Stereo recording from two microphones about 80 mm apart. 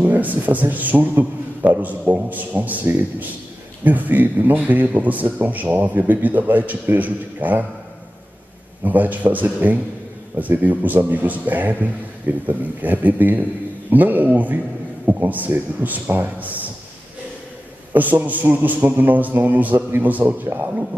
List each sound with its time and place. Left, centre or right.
0.0 s a man's voice: right
8.8 s a man's voice: right
17.9 s a man's voice: right